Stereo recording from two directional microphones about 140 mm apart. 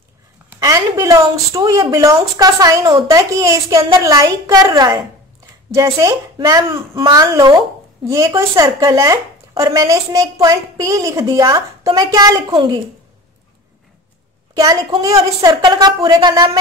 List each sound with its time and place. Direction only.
0.6 s a woman's voice: 25° right (ahead or behind)
14.5 s a woman's voice: 25° right (ahead or behind)